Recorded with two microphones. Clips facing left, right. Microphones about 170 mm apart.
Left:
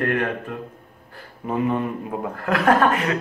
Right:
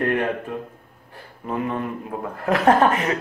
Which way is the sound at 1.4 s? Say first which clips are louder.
Left 3 dB; 5° left (ahead or behind).